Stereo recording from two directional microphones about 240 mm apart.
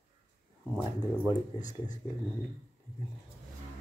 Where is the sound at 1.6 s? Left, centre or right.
Left.